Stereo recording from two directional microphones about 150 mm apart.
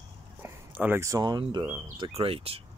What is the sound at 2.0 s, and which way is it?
Speech, 40° right (ahead or behind).